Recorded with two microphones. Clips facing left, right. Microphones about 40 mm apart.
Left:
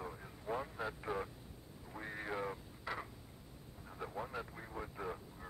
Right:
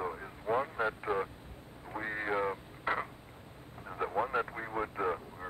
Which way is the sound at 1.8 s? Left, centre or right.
Right.